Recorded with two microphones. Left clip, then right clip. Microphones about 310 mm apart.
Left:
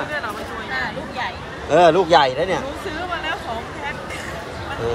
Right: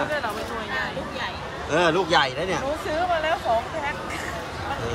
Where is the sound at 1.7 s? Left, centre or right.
Centre.